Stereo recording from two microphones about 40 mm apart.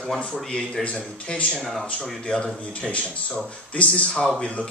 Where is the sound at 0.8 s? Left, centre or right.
Left.